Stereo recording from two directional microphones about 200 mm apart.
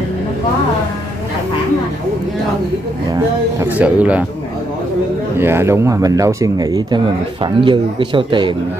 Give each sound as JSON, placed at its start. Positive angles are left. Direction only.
{"t": 3.5, "sound": "a man's voice", "side_deg": -10}
{"t": 5.4, "sound": "a man's voice", "side_deg": -10}